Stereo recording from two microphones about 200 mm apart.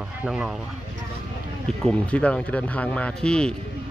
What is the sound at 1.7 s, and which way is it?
Speech, 5° left (ahead or behind).